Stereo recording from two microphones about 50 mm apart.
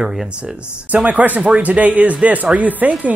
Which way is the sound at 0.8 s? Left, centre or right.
Right.